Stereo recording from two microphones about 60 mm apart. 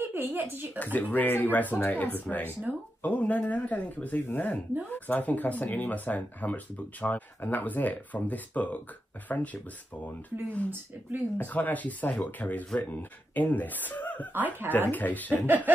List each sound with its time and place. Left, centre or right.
0.0 s speech: right
0.9 s speech: left
10.7 s speech: right
11.3 s speech: left
14.3 s speech: right
14.7 s speech: left
15.4 s snicker: right